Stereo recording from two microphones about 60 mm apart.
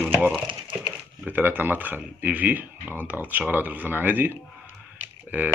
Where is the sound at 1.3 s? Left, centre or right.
Right.